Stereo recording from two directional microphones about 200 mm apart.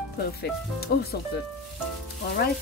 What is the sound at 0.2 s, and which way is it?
Speech, 50° left (ahead or behind).